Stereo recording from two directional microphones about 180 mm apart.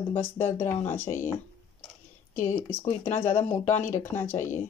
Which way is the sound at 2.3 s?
35° left (ahead or behind).